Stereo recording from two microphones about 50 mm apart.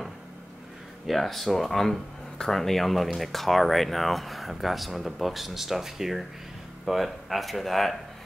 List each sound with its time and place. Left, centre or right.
1.0 s speech: centre